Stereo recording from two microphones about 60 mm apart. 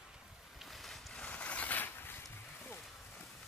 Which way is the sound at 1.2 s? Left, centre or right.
Left.